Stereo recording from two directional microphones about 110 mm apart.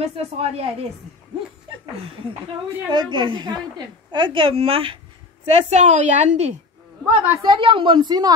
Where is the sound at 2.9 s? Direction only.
45° right (ahead or behind).